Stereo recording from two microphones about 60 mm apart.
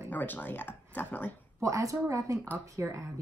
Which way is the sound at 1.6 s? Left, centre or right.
Right.